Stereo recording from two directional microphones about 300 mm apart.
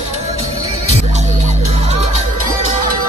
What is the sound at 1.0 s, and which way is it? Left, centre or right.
Music, right.